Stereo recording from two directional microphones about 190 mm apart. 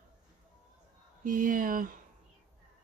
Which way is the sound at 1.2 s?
45° right (ahead or behind).